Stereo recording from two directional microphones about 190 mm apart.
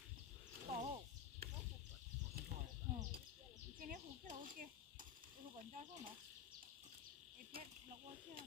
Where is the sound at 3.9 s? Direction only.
45° right (ahead or behind).